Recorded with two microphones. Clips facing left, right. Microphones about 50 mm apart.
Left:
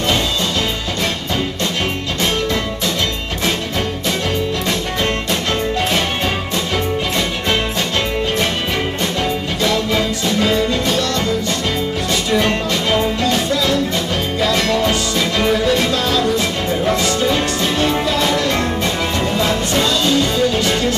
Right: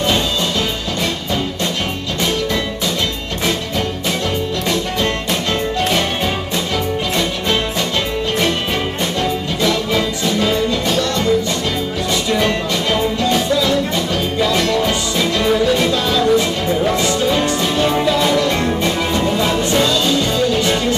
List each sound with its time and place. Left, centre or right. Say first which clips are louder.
13.3 s music: right 1 dB; centre
14.4 s music: even; centre